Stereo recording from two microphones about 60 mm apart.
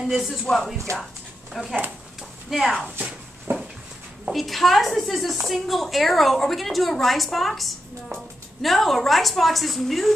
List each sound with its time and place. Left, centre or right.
0.9 s speech: right
1.5 s speech: centre
3.0 s a sound: right
4.3 s speech: centre